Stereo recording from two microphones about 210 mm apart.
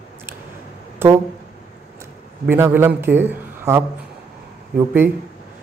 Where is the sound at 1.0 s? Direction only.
10° right (ahead or behind).